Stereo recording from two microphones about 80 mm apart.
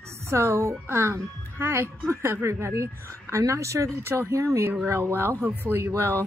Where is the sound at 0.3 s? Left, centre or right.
Right.